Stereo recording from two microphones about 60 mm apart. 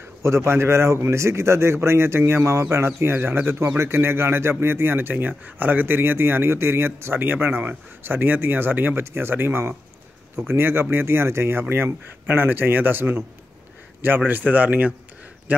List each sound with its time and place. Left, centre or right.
0.2 s speech: right
3.0 s speech: right
11.7 s a man's voice: right